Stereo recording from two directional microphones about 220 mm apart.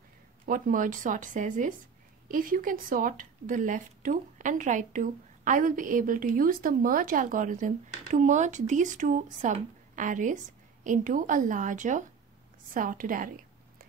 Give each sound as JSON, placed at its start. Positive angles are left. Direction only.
{"t": 0.5, "sound": "speech", "side_deg": -35}